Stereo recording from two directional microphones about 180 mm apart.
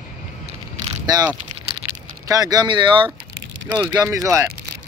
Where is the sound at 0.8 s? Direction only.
20° right (ahead or behind).